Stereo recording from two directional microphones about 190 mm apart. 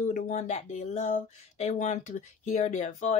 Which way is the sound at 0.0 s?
40° left (ahead or behind).